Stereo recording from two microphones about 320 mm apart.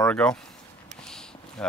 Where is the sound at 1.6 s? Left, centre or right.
Centre.